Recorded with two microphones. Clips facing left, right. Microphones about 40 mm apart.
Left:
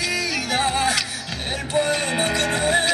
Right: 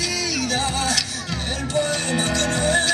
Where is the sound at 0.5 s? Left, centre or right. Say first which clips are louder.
Left 5 dB; centre.